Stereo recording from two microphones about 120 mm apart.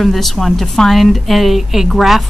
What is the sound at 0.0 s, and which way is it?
A woman's voice, centre (ahead or behind).